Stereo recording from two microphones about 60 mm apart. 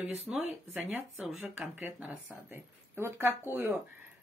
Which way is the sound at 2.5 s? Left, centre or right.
Right.